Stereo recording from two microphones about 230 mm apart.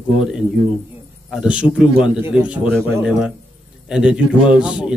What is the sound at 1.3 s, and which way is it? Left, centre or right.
A man's voice, centre.